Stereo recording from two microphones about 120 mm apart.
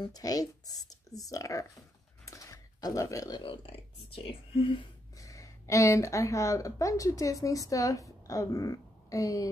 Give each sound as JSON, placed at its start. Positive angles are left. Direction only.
{"t": 0.0, "sound": "speech", "side_deg": 30}
{"t": 5.1, "sound": "speech", "side_deg": 30}